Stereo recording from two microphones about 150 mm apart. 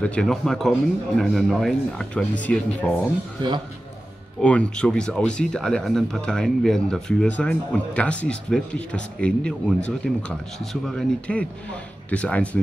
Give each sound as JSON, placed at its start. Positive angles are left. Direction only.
{"t": 0.0, "sound": "speech", "side_deg": 5}
{"t": 3.4, "sound": "a man's voice", "side_deg": -30}
{"t": 4.4, "sound": "speech", "side_deg": 10}